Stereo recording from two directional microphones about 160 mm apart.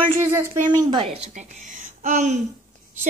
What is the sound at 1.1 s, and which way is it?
A woman's voice, 45° right (ahead or behind).